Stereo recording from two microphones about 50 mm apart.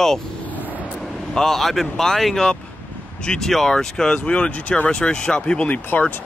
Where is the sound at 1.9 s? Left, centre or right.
Centre.